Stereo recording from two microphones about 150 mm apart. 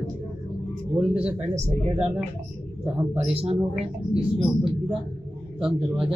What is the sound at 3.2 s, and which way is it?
Speech, 40° right (ahead or behind).